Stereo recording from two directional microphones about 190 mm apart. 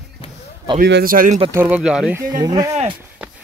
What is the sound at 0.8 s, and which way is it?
Speech, 50° right (ahead or behind).